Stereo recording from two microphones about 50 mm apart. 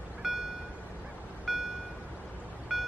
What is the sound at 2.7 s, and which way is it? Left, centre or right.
Music, centre.